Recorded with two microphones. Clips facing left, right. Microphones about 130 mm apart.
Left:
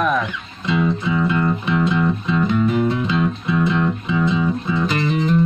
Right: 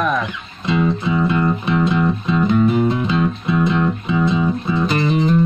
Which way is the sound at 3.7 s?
35° right (ahead or behind).